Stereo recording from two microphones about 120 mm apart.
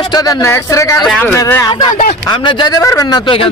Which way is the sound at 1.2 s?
20° left (ahead or behind).